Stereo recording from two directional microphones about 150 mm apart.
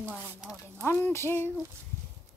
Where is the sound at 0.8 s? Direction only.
15° left (ahead or behind).